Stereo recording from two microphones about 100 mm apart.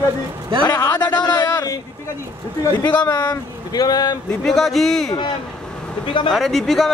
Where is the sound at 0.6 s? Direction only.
40° left (ahead or behind).